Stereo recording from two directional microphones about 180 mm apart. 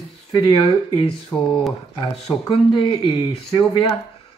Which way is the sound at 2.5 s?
25° left (ahead or behind).